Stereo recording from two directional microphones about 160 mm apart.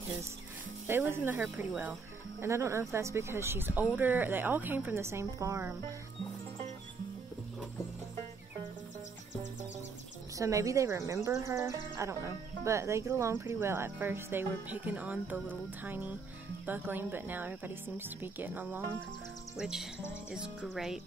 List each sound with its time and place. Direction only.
0.8 s speech: 15° right (ahead or behind)
10.3 s speech: 20° right (ahead or behind); by 21.0 s centre (ahead or behind)